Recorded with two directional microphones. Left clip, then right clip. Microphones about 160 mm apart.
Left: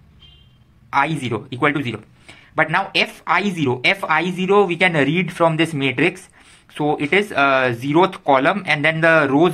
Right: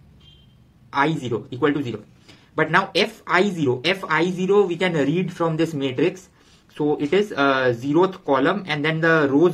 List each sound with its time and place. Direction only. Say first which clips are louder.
0.8 s speech: left 3 dB; 30° left (ahead or behind)